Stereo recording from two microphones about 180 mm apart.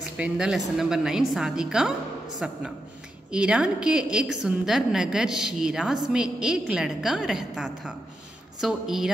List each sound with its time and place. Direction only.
0.2 s a woman's voice: 5° right (ahead or behind)